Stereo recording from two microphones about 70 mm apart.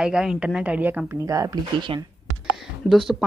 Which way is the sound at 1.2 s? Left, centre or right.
Right.